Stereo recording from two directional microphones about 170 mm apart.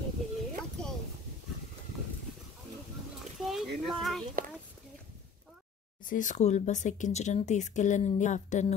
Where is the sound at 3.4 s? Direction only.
Centre (ahead or behind).